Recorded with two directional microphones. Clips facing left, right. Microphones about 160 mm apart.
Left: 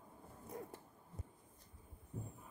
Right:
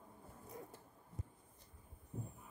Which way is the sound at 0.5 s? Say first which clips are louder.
Left 4 dB; 65° left (ahead or behind).